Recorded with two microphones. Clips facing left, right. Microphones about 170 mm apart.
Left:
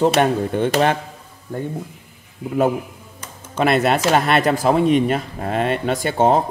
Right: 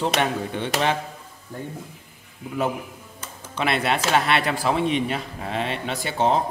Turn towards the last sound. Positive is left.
turn(degrees=50)  # may be behind; listen again after turning